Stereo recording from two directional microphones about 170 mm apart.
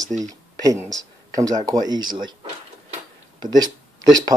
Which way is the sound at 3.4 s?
25° right (ahead or behind).